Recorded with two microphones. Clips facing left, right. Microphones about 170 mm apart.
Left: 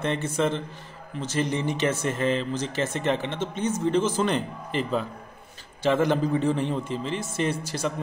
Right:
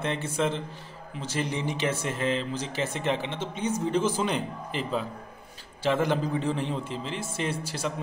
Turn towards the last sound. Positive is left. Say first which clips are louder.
# left 3 dB
turn(degrees=-10)  # may be behind; listen again after turning